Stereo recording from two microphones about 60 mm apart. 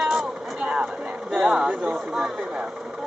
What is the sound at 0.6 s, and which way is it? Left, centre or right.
Speech, right.